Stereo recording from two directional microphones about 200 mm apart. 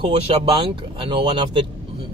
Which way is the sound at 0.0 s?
25° right (ahead or behind).